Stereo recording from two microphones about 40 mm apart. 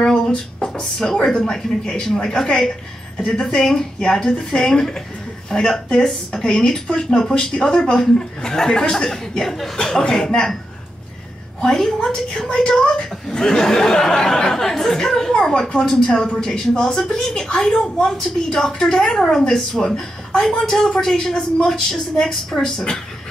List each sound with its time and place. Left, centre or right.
0.3 s a woman's voice: left
0.9 s a woman's voice: centre
11.6 s a woman's voice: centre